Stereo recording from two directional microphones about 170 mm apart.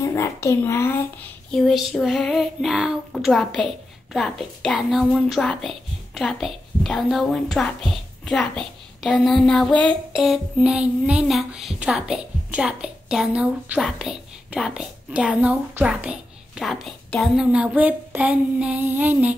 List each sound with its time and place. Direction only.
0.0 s a child's voice: 15° left (ahead or behind)
1.5 s a child's voice: centre (ahead or behind)